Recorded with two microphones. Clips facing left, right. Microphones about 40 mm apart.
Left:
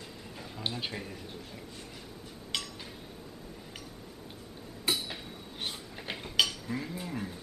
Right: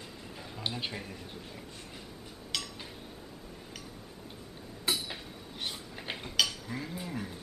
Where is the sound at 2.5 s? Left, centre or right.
Centre.